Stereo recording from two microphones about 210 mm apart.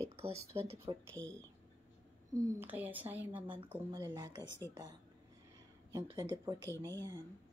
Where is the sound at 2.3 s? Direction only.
15° right (ahead or behind).